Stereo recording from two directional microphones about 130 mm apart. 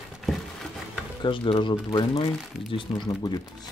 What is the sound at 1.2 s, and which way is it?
Speech, 40° left (ahead or behind).